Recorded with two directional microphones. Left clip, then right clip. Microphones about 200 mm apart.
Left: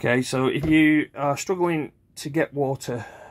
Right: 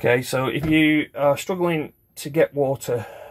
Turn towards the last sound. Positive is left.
turn(degrees=10)  # may be behind; listen again after turning